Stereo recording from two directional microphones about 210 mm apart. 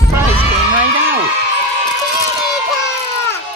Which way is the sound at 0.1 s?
10° right (ahead or behind).